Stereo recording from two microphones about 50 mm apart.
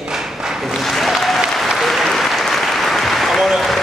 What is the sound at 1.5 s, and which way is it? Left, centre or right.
Applause, centre.